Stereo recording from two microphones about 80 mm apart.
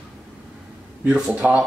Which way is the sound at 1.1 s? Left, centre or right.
Centre.